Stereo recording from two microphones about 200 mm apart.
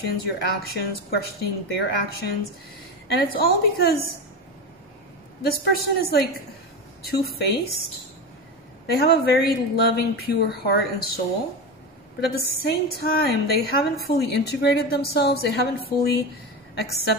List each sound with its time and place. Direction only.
0.0 s a woman's voice: 55° left (ahead or behind)
5.4 s a woman's voice: 50° left (ahead or behind)
8.8 s a woman's voice: 50° left (ahead or behind)
12.4 s a woman's voice: 50° left (ahead or behind)